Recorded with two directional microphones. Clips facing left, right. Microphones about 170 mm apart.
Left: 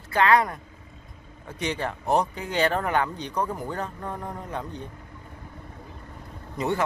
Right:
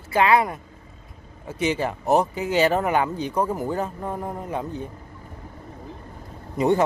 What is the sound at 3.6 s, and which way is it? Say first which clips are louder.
Speech: right 6 dB; 5° right (ahead or behind).